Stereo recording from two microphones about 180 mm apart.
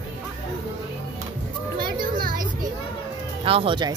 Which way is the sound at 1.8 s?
55° right (ahead or behind).